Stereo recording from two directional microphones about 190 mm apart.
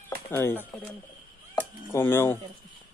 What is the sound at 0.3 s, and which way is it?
Speech, 10° left (ahead or behind).